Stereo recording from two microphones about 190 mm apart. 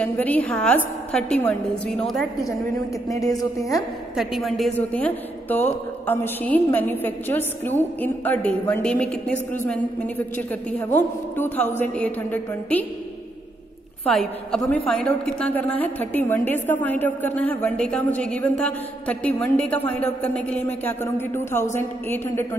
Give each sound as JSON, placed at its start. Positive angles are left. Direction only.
{"t": 0.0, "sound": "a woman's voice", "side_deg": 10}
{"t": 3.1, "sound": "a woman's voice", "side_deg": 15}
{"t": 4.2, "sound": "a woman's voice", "side_deg": 0}
{"t": 14.0, "sound": "a woman's voice", "side_deg": 5}